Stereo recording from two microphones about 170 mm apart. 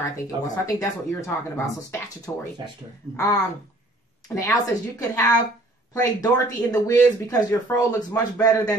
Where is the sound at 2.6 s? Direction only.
30° right (ahead or behind).